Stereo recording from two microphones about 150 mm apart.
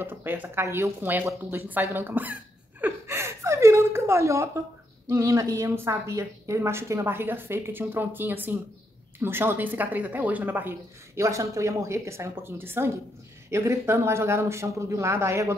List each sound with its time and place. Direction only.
0.0 s speech: 15° right (ahead or behind)